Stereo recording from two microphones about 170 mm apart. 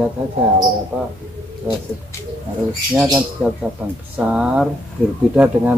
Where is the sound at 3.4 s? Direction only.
5° right (ahead or behind).